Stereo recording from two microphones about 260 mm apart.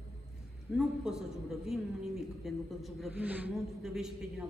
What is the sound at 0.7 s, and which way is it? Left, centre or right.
A woman's voice, centre.